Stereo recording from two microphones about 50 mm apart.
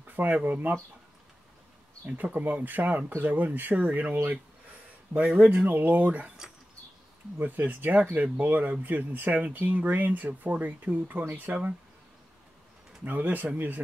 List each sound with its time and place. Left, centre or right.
0.1 s speech: right
2.0 s speech: right
5.4 s speech: right
7.3 s speech: right
13.0 s speech: right